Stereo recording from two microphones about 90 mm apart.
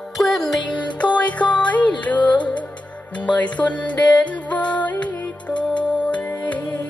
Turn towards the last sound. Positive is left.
turn(degrees=20)  # may be behind; listen again after turning